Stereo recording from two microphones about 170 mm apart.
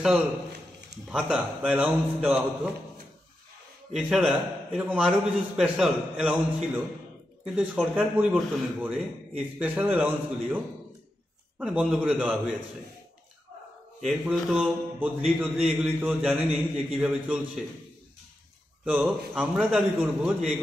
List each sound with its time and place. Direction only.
1.0 s a man's voice: 5° right (ahead or behind)
3.9 s a man's voice: 5° right (ahead or behind)
14.0 s a man's voice: centre (ahead or behind)
18.9 s a man's voice: 5° right (ahead or behind)